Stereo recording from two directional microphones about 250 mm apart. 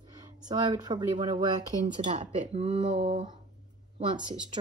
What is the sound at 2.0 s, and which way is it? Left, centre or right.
Speech, right.